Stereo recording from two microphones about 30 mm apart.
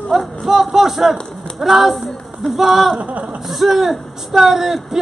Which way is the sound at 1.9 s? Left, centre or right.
Centre.